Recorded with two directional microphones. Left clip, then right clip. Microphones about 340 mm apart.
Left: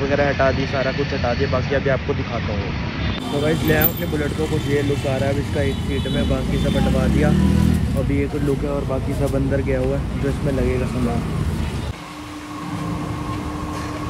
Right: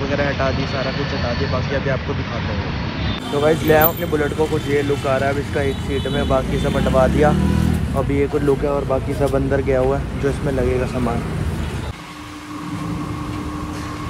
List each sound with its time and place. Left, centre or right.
0.0 s speech: centre
3.4 s speech: centre